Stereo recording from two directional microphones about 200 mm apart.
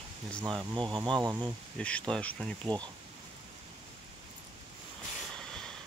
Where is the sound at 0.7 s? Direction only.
25° right (ahead or behind).